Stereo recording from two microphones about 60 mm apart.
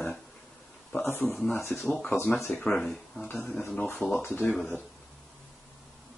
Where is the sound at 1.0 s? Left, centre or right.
Left.